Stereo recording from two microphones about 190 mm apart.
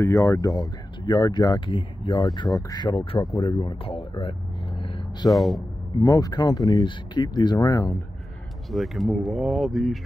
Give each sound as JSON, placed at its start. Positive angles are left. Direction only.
{"t": 0.0, "sound": "speech", "side_deg": 15}
{"t": 5.3, "sound": "speech", "side_deg": 0}
{"t": 5.9, "sound": "speech", "side_deg": 20}
{"t": 8.6, "sound": "speech", "side_deg": 0}